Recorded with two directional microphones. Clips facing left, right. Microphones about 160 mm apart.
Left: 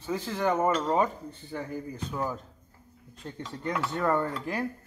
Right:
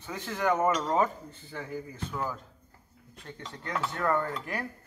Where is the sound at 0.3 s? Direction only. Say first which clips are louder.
Even; 10° left (ahead or behind).